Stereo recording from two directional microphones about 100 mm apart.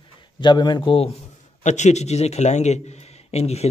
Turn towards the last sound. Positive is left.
turn(degrees=90)